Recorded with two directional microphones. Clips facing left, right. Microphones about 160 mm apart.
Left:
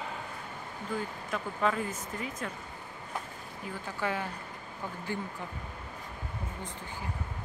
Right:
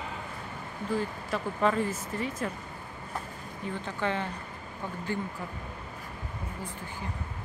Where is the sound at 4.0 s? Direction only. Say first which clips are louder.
Right 1 dB; 10° left (ahead or behind).